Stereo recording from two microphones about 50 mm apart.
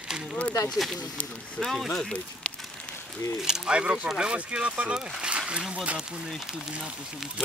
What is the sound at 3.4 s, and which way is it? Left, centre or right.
Speech, centre.